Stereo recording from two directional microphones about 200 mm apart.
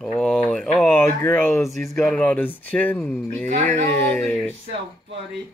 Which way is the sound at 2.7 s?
10° left (ahead or behind).